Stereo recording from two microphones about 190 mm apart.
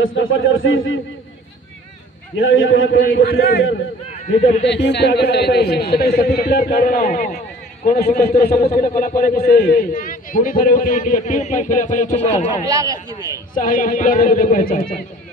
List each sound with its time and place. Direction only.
0.0 s a man's voice: 90° left
2.3 s a man's voice: 90° left
3.2 s a man's voice: 55° left (ahead or behind)
4.6 s a man's voice: 65° left (ahead or behind); by 12.6 s 35° left (ahead or behind)
12.6 s a man's voice: 15° right (ahead or behind)
13.6 s a man's voice: 45° left (ahead or behind)